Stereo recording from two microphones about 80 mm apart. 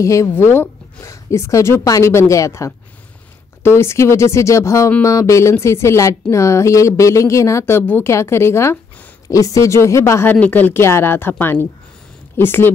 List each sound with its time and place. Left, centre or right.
0.0 s speech: left
0.3 s a woman's voice: left
10.2 s speech: left